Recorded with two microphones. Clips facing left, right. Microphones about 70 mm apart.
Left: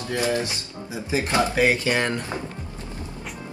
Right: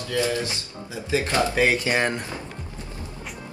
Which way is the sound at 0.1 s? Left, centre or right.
Left.